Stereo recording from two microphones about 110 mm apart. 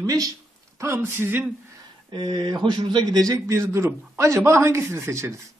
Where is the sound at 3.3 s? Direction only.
25° right (ahead or behind).